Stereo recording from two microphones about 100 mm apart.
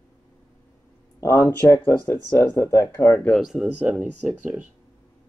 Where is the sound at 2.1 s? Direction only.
30° left (ahead or behind).